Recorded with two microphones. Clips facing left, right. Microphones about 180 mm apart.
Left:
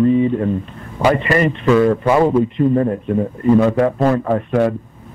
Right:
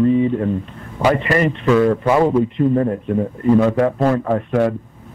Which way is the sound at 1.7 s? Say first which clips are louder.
Left 1 dB; 25° left (ahead or behind).